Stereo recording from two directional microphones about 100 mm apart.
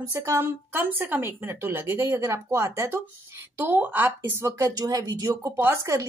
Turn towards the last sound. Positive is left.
turn(degrees=-30)  # may be behind; listen again after turning